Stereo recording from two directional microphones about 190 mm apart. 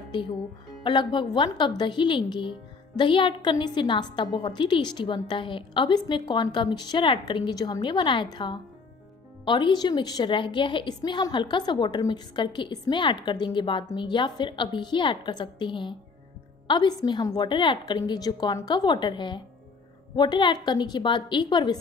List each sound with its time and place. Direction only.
0.8 s a woman's voice: 25° left (ahead or behind)